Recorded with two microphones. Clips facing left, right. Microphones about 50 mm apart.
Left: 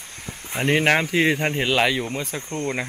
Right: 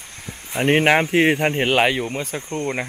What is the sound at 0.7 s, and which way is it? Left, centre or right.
Speech, right.